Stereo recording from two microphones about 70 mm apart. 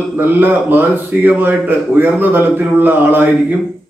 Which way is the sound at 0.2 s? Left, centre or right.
Right.